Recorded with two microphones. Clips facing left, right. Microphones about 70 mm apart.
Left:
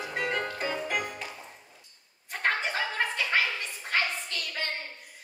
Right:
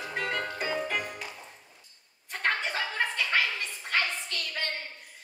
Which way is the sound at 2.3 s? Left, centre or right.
Centre.